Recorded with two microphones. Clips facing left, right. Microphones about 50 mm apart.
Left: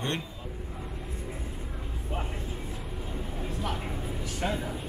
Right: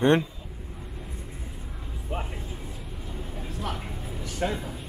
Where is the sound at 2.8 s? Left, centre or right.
Centre.